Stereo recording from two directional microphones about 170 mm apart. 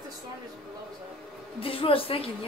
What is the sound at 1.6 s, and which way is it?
Speech, 35° left (ahead or behind).